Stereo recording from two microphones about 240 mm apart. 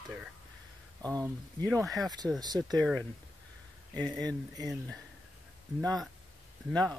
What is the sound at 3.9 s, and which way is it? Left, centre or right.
Speech, centre.